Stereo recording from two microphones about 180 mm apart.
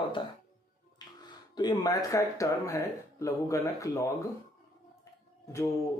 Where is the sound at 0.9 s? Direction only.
20° left (ahead or behind).